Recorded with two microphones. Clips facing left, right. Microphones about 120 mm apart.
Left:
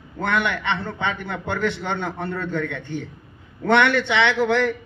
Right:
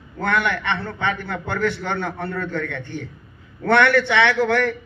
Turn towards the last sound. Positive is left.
turn(degrees=20)  # may be behind; listen again after turning